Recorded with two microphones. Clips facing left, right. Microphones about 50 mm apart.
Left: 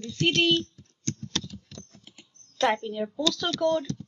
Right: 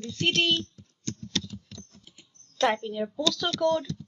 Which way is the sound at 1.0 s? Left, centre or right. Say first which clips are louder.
Even; left.